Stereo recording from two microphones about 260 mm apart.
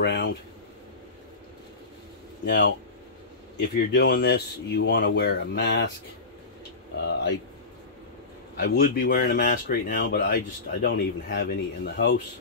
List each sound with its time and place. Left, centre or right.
0.0 s speech: left
2.4 s speech: left
3.7 s speech: left
7.0 s speech: left
8.5 s speech: left